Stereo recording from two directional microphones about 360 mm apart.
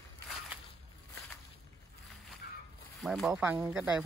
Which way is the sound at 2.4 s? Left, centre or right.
Left.